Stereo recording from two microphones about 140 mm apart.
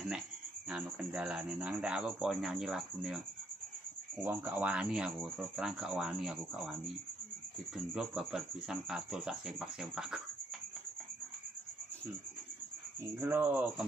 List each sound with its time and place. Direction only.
0.7 s speech: 5° right (ahead or behind)
4.2 s speech: 15° right (ahead or behind)
7.7 s speech: 5° right (ahead or behind)
13.1 s speech: 15° right (ahead or behind)